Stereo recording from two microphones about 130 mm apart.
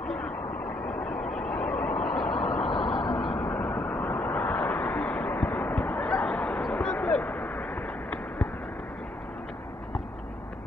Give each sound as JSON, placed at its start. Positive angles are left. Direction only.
{"t": 0.0, "sound": "vehicle", "side_deg": 5}
{"t": 2.6, "sound": "vehicle", "side_deg": 40}
{"t": 3.2, "sound": "vehicle", "side_deg": 5}